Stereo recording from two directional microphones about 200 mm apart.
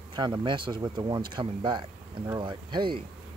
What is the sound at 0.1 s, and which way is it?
Speech, 20° right (ahead or behind).